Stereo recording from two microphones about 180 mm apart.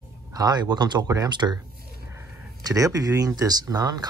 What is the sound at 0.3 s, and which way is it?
Speech, 20° right (ahead or behind).